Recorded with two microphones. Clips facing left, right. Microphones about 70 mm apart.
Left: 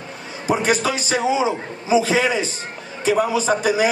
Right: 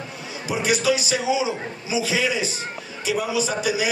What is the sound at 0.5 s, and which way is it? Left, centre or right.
A man's voice, left.